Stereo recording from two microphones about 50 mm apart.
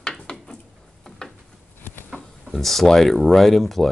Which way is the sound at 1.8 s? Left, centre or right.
Left.